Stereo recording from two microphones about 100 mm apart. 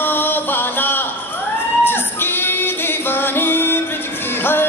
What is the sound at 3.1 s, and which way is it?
Music, 20° left (ahead or behind).